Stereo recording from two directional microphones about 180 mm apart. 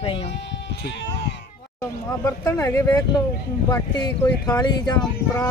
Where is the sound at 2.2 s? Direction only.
15° left (ahead or behind).